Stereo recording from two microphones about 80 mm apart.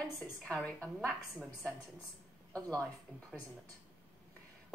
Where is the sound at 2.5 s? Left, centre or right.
Centre.